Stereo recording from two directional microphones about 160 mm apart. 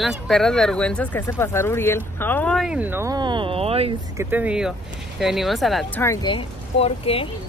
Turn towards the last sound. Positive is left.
turn(degrees=35)  # may be behind; listen again after turning